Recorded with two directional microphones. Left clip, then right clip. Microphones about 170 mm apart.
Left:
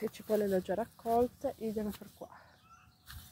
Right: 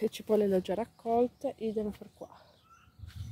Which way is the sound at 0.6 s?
40° right (ahead or behind).